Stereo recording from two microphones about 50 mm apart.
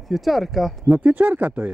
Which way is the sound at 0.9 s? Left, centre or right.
Right.